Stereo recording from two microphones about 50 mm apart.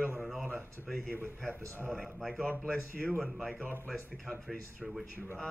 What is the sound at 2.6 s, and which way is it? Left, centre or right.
Speech, centre.